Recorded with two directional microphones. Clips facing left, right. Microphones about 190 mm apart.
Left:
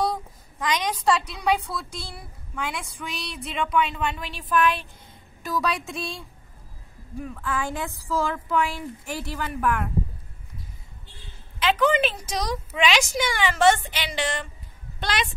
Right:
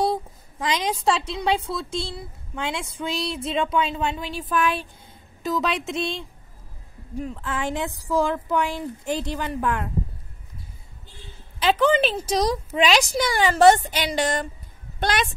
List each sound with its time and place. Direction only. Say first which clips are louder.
0.7 s a woman's voice: even; 25° right (ahead or behind)
7.2 s a woman's voice: even; 20° right (ahead or behind)
11.6 s a woman's voice: right 2 dB; 30° right (ahead or behind); by 15.3 s 45° right (ahead or behind)